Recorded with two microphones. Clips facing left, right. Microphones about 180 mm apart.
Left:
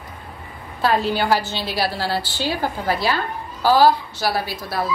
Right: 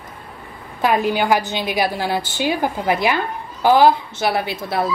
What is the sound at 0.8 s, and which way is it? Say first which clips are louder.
A woman's voice: right 2 dB; 15° right (ahead or behind).